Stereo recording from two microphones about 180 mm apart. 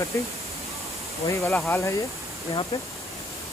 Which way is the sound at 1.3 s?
15° left (ahead or behind).